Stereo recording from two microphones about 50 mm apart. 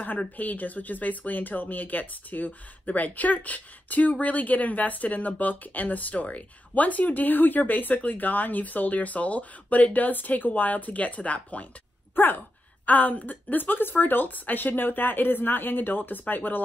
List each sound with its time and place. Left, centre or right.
0.0 s speech: left
12.2 s speech: left